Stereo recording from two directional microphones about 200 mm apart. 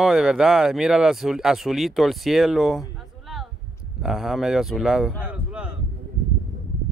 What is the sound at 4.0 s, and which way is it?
Speech, centre (ahead or behind).